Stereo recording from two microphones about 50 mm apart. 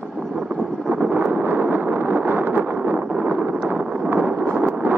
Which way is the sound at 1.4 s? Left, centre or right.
Right.